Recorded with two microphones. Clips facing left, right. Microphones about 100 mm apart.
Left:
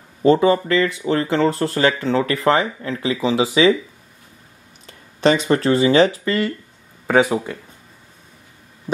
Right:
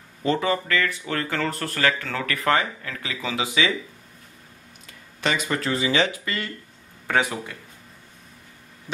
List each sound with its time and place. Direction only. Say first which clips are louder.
0.2 s speech: left 9 dB; 30° left (ahead or behind)
4.8 s speech: left 10 dB; 35° left (ahead or behind)